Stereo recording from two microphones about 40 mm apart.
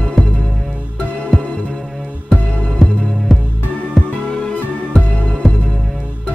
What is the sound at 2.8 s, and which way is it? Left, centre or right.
Music, centre.